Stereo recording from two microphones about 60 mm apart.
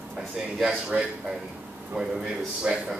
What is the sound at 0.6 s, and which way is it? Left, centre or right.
Speech, centre.